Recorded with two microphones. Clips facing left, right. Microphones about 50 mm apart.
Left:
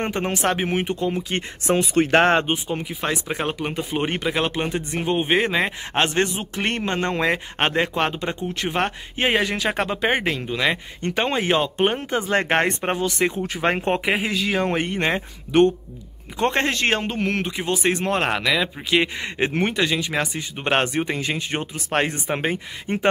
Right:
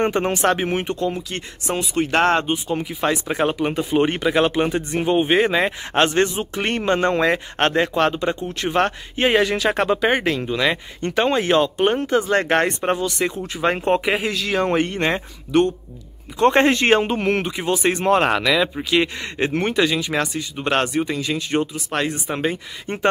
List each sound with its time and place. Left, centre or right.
0.0 s speech: centre
1.3 s speech: left
2.7 s speech: centre
16.5 s speech: centre
19.7 s speech: centre
20.3 s speech: left
21.7 s speech: left
22.9 s speech: centre